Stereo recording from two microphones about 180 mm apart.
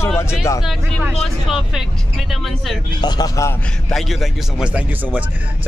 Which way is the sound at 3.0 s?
20° left (ahead or behind).